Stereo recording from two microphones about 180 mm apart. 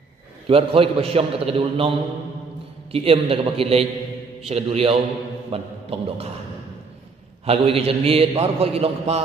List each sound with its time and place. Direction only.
0.5 s a man's voice: 30° right (ahead or behind)
2.9 s a man's voice: 35° right (ahead or behind)
5.5 s a sound: 30° right (ahead or behind)
7.4 s a man's voice: 35° right (ahead or behind)